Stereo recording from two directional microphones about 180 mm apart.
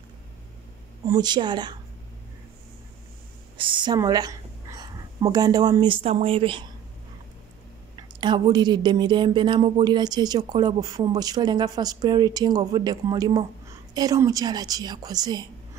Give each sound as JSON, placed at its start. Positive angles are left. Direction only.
{"t": 1.0, "sound": "speech", "side_deg": -20}
{"t": 3.5, "sound": "speech", "side_deg": -25}
{"t": 7.9, "sound": "speech", "side_deg": -25}